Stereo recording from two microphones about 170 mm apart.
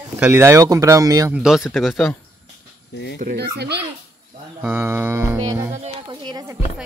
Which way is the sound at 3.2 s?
65° right (ahead or behind).